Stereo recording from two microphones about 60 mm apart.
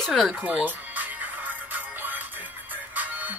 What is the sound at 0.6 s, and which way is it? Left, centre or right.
Music, right.